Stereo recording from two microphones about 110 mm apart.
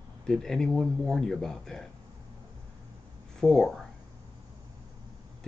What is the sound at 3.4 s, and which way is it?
Speech, 5° left (ahead or behind).